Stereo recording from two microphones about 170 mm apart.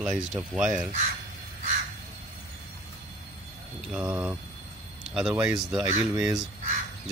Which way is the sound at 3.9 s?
5° right (ahead or behind).